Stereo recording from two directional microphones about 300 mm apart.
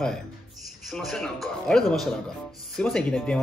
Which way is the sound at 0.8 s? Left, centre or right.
Centre.